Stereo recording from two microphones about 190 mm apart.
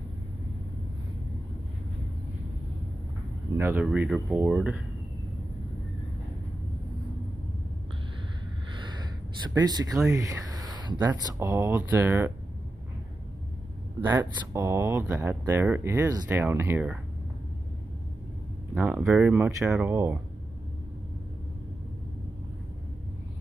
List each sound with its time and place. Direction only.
3.5 s speech: 10° right (ahead or behind)
8.7 s a sound: 25° right (ahead or behind)
9.5 s speech: 20° right (ahead or behind)
14.0 s speech: 15° right (ahead or behind)
18.8 s speech: centre (ahead or behind)